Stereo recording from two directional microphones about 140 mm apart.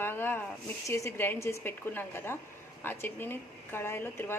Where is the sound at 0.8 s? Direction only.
20° left (ahead or behind).